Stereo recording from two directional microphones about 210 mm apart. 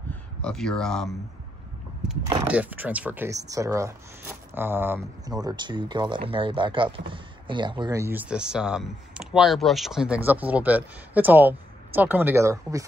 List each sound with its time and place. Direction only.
0.1 s speech: 5° left (ahead or behind)
2.4 s speech: 5° right (ahead or behind)